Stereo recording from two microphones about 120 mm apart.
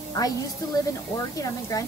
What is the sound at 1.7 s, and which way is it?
Speech, 30° left (ahead or behind).